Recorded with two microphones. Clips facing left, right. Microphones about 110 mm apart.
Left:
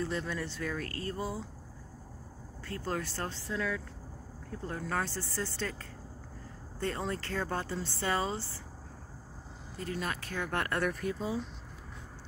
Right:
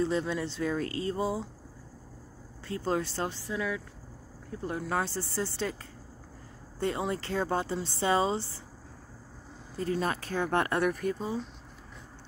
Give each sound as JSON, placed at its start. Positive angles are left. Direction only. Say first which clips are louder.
{"t": 0.0, "sound": "speech", "louder": "right 6 dB", "side_deg": -20}
{"t": 2.6, "sound": "speech", "louder": "right 5 dB", "side_deg": -20}
{"t": 3.4, "sound": "speech", "louder": "right 2 dB", "side_deg": -5}
{"t": 9.8, "sound": "speech", "louder": "right 6 dB", "side_deg": -30}
{"t": 10.8, "sound": "speech", "louder": "right 4 dB", "side_deg": -5}